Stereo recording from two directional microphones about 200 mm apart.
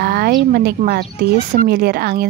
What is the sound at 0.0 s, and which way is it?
Speech, 50° right (ahead or behind).